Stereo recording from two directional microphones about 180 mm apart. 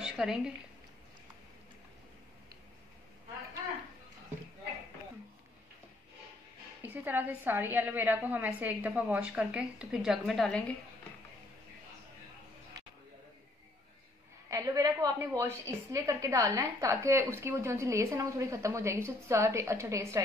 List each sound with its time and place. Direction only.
0.0 s a sound: 5° right (ahead or behind)
6.8 s a woman's voice: 10° right (ahead or behind)
14.5 s a woman's voice: 20° right (ahead or behind)